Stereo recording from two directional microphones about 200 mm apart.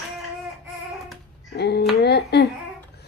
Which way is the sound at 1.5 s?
55° left (ahead or behind).